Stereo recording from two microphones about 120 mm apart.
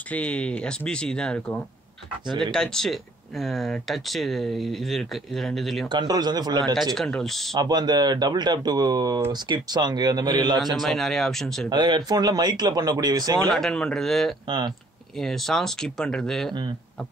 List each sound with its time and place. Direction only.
0.1 s speech: 10° left (ahead or behind)
5.9 s speech: 35° right (ahead or behind)
6.7 s speech: 5° left (ahead or behind)
7.5 s speech: 35° right (ahead or behind)
10.8 s speech: 5° left (ahead or behind)
11.7 s speech: 40° right (ahead or behind)
13.5 s speech: 5° left (ahead or behind)